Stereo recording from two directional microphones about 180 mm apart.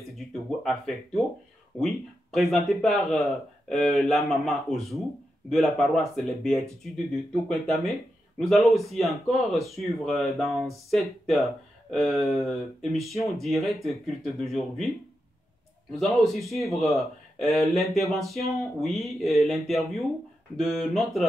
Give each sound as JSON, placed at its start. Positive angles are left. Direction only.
{"t": 0.1, "sound": "speech", "side_deg": 0}
{"t": 16.0, "sound": "speech", "side_deg": 0}